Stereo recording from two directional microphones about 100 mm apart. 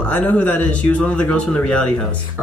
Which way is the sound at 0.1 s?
15° left (ahead or behind).